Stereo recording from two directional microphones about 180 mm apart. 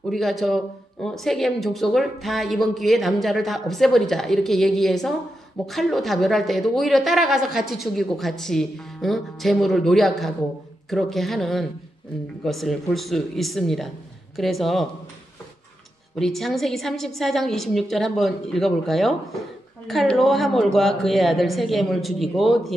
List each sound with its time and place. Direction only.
0.1 s a woman's voice: centre (ahead or behind)
16.2 s a woman's voice: centre (ahead or behind)